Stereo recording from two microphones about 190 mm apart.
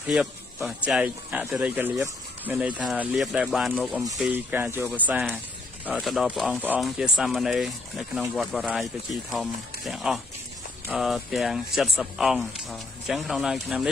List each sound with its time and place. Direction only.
0.0 s speech: 5° right (ahead or behind)